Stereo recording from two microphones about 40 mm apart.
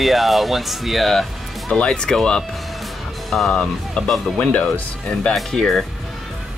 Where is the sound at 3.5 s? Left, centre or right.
Centre.